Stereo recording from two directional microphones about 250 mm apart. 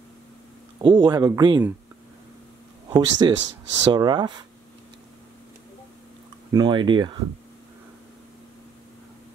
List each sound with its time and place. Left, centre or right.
0.7 s speech: centre
2.9 s speech: centre
6.5 s speech: centre